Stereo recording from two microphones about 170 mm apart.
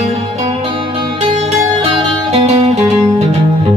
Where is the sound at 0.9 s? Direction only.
35° right (ahead or behind).